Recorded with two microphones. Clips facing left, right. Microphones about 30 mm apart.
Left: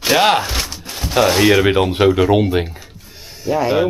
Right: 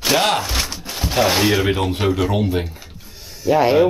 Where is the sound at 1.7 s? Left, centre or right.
Centre.